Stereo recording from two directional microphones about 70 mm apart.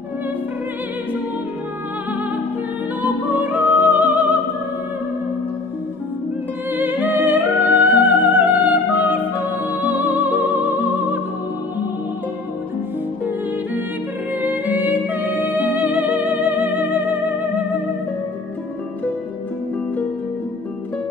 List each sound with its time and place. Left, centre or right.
3.0 s music: right
6.7 s music: right
14.4 s music: right